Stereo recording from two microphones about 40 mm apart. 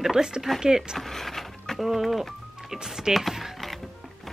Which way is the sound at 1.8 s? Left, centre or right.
Centre.